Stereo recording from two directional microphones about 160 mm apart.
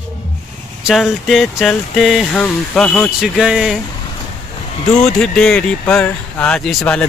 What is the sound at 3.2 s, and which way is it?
Speech, 5° right (ahead or behind).